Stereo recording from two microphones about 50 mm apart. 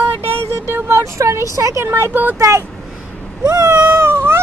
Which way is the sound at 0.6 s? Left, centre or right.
Right.